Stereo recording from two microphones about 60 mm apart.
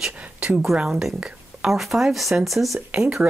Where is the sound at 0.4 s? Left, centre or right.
Right.